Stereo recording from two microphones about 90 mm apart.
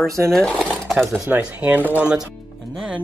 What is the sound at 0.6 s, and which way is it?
Sewing machine, 5° left (ahead or behind).